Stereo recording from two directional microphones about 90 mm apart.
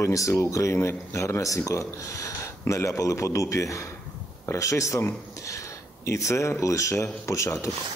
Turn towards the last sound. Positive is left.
turn(degrees=35)  # may be behind; listen again after turning